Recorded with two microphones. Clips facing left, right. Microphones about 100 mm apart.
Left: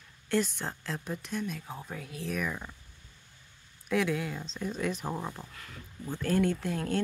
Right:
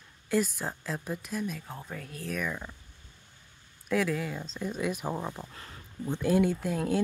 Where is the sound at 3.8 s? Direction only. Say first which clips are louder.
Right 1 dB; centre (ahead or behind).